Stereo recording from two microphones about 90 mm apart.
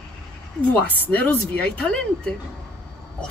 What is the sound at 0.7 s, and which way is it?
Speech, 15° left (ahead or behind).